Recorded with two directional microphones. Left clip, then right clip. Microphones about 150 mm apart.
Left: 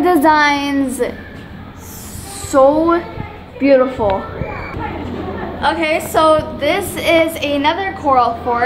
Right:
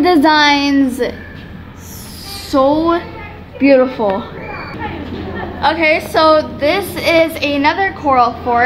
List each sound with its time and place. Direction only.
0.0 s a woman's voice: 15° right (ahead or behind)
2.5 s a woman's voice: 20° right (ahead or behind)
5.6 s a woman's voice: 10° right (ahead or behind)